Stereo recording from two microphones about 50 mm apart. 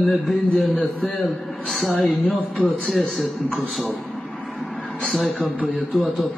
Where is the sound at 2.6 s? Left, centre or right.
Left.